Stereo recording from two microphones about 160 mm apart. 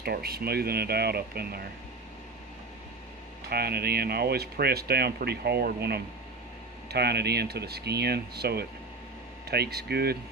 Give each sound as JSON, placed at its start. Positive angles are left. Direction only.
{"t": 0.0, "sound": "speech", "side_deg": -75}
{"t": 3.4, "sound": "speech", "side_deg": -75}